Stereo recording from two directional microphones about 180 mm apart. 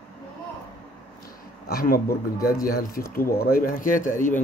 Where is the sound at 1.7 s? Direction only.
55° left (ahead or behind).